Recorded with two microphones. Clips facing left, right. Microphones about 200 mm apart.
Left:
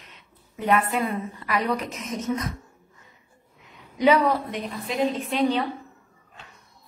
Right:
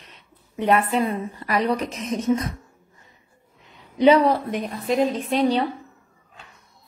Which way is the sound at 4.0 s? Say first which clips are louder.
Right 4 dB; 30° right (ahead or behind).